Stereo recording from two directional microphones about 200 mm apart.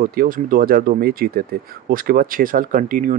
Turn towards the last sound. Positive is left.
turn(degrees=-40)  # may be behind; listen again after turning